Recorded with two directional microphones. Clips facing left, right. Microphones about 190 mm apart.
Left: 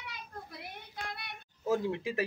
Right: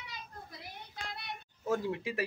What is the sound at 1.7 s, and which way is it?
Speech, centre (ahead or behind).